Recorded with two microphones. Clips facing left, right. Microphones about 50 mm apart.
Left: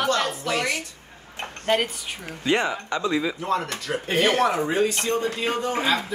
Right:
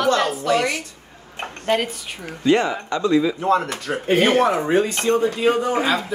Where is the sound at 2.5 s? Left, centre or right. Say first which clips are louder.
Right 5 dB; left.